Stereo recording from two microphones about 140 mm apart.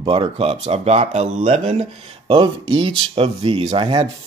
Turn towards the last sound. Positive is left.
turn(degrees=-40)  # may be behind; listen again after turning